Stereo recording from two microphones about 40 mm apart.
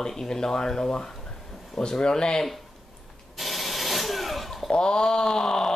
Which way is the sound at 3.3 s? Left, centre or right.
Centre.